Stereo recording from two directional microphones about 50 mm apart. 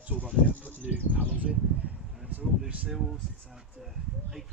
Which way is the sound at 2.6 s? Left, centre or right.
Right.